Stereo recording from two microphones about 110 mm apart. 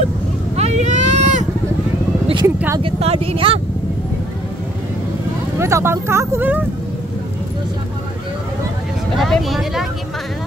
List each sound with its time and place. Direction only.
0.6 s vehicle: 90° right
2.4 s a sound: 25° right (ahead or behind)
2.8 s speech: 65° right (ahead or behind)
5.6 s speech: 25° right (ahead or behind)
9.2 s speech: centre (ahead or behind)